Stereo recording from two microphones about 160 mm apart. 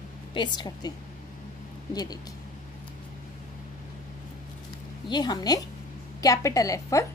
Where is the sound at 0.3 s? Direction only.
25° left (ahead or behind).